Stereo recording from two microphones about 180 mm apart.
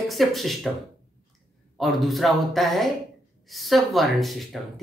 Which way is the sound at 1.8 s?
Centre (ahead or behind).